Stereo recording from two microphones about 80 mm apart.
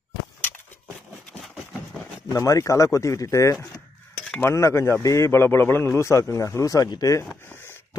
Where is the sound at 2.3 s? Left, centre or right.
Left.